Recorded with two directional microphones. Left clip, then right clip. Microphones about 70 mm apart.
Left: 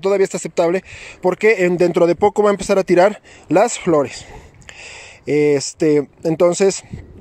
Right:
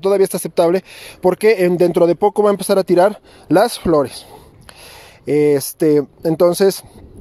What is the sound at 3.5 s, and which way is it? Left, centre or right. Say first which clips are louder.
Speech: right 1 dB; right.